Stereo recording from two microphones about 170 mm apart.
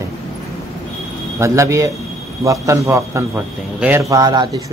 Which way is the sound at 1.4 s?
15° right (ahead or behind).